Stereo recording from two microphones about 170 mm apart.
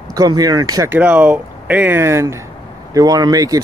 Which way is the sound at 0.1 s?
20° right (ahead or behind).